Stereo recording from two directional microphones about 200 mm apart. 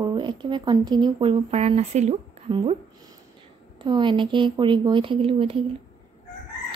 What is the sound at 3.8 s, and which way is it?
A woman's voice, 25° right (ahead or behind).